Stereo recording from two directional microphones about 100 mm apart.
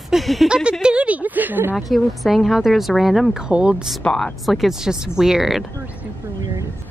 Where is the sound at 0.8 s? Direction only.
10° right (ahead or behind).